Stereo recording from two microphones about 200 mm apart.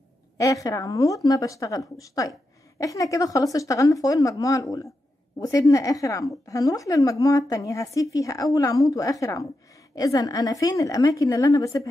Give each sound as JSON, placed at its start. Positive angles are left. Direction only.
{"t": 0.4, "sound": "a woman's voice", "side_deg": 15}